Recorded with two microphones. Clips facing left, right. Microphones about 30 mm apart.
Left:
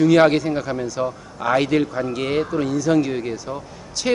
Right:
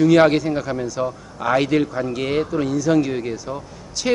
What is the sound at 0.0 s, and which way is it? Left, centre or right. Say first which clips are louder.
A man's voice: even; centre.